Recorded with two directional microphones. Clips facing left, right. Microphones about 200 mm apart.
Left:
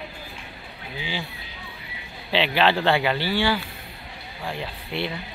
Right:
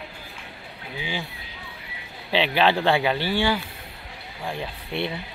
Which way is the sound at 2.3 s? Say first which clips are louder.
Even; 15° right (ahead or behind).